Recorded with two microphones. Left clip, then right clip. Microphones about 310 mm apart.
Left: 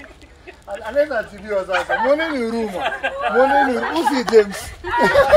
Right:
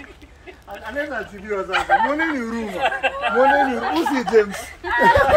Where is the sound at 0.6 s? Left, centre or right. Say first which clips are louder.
Left 8 dB; centre.